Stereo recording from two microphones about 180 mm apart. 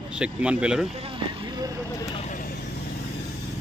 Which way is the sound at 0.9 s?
30° right (ahead or behind).